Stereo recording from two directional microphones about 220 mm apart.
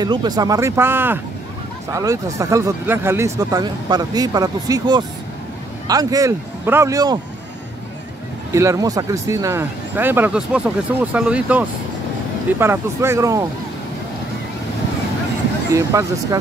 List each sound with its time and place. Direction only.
0.0 s speech: 20° right (ahead or behind)
8.5 s speech: 15° right (ahead or behind)
15.7 s speech: 15° right (ahead or behind)